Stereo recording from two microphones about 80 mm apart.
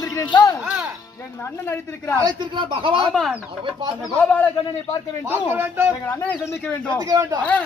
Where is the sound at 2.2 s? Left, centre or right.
Right.